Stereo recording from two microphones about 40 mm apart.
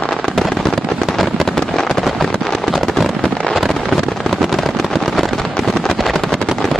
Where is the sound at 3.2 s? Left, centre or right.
Left.